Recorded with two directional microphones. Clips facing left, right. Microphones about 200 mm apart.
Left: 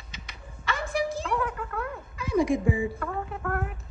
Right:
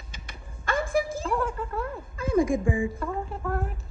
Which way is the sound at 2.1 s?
50° right (ahead or behind).